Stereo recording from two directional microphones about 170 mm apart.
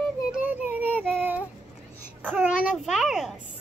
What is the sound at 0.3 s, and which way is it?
Child singing, 10° right (ahead or behind).